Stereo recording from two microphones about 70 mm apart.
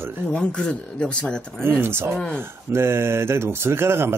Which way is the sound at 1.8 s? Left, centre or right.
Right.